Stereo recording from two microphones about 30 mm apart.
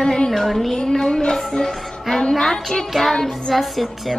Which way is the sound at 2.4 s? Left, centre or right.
Centre.